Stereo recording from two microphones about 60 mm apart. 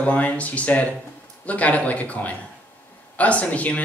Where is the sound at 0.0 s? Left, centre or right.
Left.